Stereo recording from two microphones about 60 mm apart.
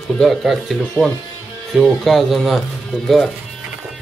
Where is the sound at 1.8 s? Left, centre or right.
Centre.